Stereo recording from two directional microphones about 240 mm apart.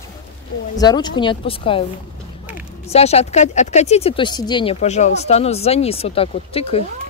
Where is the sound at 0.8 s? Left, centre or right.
Centre.